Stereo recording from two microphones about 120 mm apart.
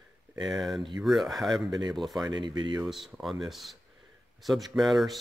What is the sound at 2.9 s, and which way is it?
Speech, centre (ahead or behind).